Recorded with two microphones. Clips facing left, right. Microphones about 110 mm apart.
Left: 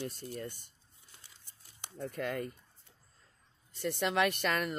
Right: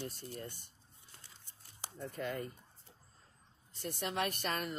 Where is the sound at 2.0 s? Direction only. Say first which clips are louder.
Left 4 dB; 60° left (ahead or behind).